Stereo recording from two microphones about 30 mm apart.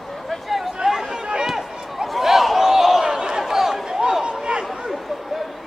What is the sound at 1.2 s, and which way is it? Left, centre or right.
Run, right.